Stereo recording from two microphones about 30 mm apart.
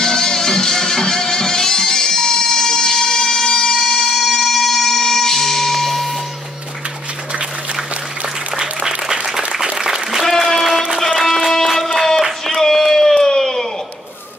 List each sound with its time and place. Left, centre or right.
0.0 s music: left
4.1 s a sound: centre
8.5 s applause: centre
10.2 s applause: centre
11.1 s music: centre
12.7 s a sound: centre